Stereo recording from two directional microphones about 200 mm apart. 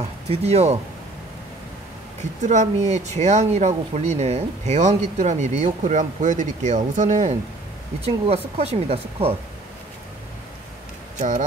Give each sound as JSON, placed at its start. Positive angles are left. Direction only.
{"t": 0.0, "sound": "speech", "side_deg": -30}
{"t": 2.4, "sound": "speech", "side_deg": -35}
{"t": 11.1, "sound": "speech", "side_deg": -35}